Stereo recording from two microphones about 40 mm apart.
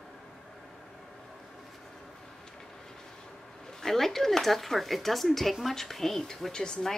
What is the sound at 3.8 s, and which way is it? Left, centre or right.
Speech, centre.